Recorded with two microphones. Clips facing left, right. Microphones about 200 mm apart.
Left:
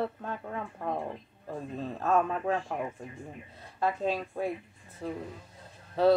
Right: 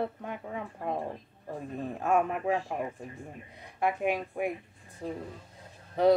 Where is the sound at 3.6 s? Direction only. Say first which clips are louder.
Right 1 dB; 15° right (ahead or behind).